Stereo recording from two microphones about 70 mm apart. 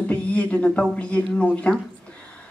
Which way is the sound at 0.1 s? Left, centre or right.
Centre.